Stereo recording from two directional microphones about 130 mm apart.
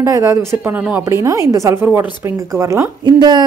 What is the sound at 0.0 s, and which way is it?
Speech, 25° right (ahead or behind).